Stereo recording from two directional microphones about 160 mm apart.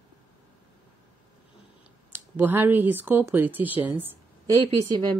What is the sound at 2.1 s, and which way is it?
Speech, 15° right (ahead or behind).